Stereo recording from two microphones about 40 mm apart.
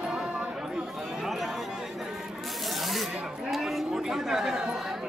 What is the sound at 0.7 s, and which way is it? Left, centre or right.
Chatter, centre.